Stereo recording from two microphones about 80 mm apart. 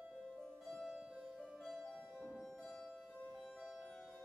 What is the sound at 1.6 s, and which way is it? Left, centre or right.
Music, centre.